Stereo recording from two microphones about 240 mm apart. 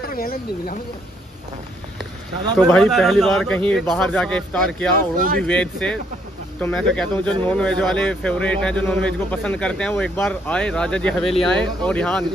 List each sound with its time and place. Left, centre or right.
0.1 s speech: left
2.6 s speech: centre
5.1 s speech: right
5.4 s speech: centre